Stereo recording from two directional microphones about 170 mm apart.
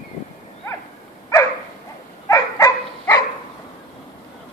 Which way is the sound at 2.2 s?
20° left (ahead or behind).